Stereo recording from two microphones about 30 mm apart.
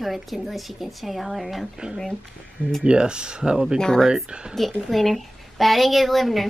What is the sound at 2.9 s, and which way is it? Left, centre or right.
Speech, right.